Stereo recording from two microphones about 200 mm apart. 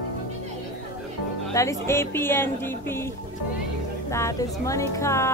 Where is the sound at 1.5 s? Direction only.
15° left (ahead or behind).